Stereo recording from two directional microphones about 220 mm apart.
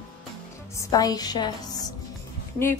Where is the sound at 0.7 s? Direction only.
15° left (ahead or behind).